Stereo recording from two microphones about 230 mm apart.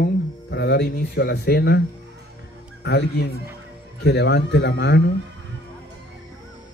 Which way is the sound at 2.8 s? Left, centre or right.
Left.